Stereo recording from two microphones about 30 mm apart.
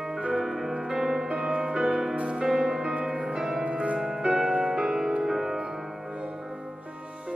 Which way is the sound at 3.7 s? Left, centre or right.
Right.